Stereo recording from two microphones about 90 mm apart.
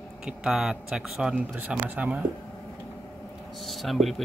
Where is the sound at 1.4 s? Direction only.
20° right (ahead or behind).